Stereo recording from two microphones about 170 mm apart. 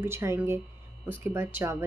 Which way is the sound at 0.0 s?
15° right (ahead or behind).